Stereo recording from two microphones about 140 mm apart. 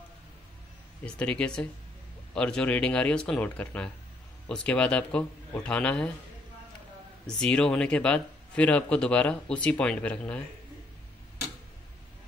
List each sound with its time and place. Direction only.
1.0 s speech: 5° left (ahead or behind)
7.2 s speech: 5° left (ahead or behind)